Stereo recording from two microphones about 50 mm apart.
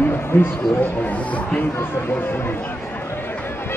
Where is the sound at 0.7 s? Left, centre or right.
Left.